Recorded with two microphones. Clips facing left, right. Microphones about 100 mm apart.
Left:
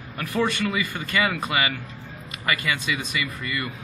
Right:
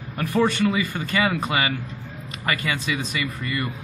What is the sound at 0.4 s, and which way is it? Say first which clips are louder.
Speech: right 3 dB; 30° right (ahead or behind).